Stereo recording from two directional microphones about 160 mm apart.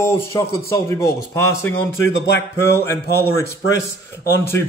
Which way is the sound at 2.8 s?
15° left (ahead or behind).